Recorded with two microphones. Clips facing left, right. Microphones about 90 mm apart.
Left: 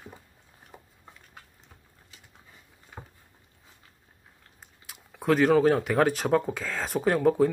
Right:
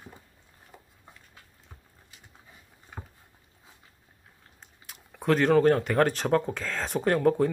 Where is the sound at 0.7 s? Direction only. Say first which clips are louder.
Left 2 dB; 20° left (ahead or behind).